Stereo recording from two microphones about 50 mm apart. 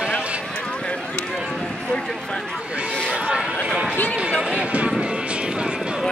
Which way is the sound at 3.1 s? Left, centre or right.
Centre.